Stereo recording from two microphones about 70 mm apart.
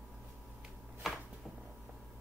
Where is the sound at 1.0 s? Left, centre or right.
Centre.